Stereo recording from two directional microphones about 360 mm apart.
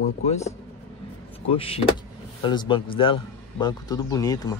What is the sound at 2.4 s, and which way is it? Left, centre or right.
Speech, centre.